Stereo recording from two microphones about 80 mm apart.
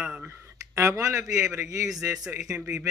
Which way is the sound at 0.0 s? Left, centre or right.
Centre.